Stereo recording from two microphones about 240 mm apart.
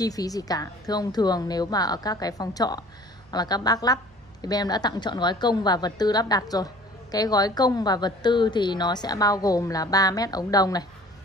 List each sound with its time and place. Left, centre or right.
0.0 s a woman's voice: centre